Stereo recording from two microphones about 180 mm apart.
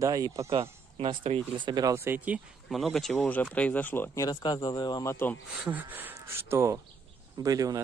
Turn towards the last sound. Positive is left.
turn(degrees=-20)  # may be behind; listen again after turning